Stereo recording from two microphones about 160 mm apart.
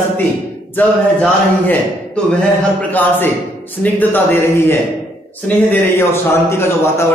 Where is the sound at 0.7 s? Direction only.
10° left (ahead or behind).